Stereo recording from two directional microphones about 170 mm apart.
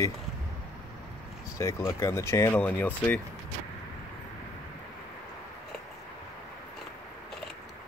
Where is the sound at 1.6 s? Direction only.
15° left (ahead or behind).